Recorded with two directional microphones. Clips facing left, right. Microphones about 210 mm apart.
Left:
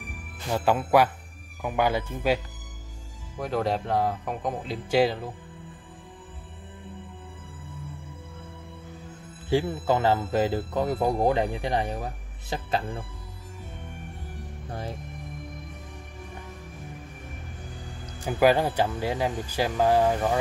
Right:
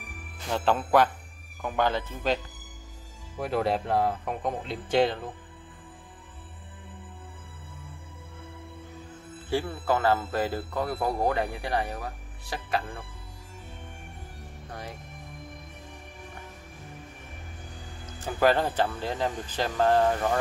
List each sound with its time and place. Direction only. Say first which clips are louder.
0.5 s speech: left 2 dB; 10° left (ahead or behind)
3.3 s speech: even; 5° right (ahead or behind)
9.5 s speech: left 3 dB; 15° left (ahead or behind)
14.7 s music: left 5 dB; 30° left (ahead or behind)
18.2 s speech: left 2 dB; 10° left (ahead or behind)